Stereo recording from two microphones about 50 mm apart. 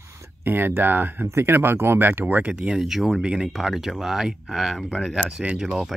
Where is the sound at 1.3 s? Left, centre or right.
Right.